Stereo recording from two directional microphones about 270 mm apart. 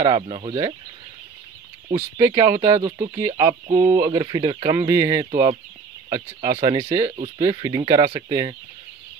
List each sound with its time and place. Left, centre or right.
0.0 s speech: centre
1.9 s speech: right
2.2 s speech: centre
5.3 s speech: right